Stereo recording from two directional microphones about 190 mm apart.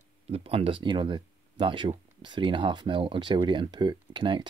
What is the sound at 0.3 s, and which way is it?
Speech, 30° right (ahead or behind).